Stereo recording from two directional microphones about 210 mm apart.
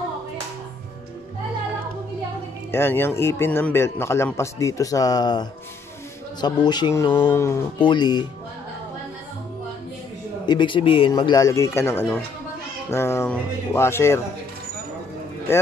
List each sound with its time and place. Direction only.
2.7 s a man's voice: 10° left (ahead or behind)
10.4 s a man's voice: 20° left (ahead or behind)